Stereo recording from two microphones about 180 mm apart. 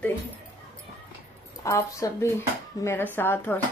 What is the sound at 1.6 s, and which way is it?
A woman's voice, 15° left (ahead or behind).